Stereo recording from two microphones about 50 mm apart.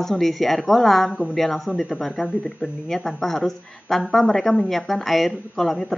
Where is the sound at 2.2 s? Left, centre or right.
Left.